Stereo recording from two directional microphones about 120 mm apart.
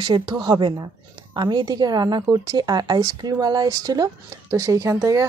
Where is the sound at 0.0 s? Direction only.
35° right (ahead or behind).